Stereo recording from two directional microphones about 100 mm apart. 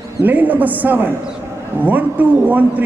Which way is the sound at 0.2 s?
15° right (ahead or behind).